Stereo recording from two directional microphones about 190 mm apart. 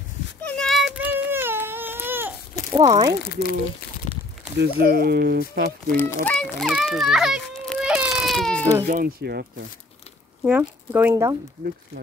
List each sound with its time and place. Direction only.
0.4 s baby cry: 5° left (ahead or behind); by 2.3 s 10° right (ahead or behind)
2.7 s speech: 20° right (ahead or behind)
3.3 s speech: 55° left (ahead or behind)
4.0 s a sound: 40° left (ahead or behind)
4.6 s speech: 55° right (ahead or behind)
5.9 s a child's voice: 10° left (ahead or behind)
8.8 s speech: 50° right (ahead or behind)
10.9 s speech: 10° right (ahead or behind)